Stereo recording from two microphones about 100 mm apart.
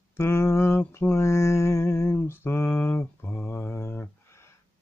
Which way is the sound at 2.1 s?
25° left (ahead or behind).